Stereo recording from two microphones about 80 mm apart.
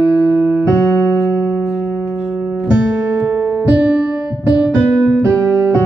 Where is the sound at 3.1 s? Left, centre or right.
Right.